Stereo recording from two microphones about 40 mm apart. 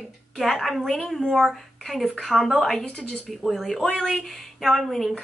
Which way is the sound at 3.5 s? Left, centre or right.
Centre.